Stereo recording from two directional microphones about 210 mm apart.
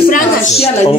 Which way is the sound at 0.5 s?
30° left (ahead or behind).